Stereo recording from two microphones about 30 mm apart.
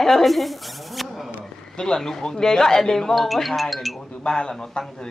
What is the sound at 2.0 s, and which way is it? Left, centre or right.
A woman's voice, centre.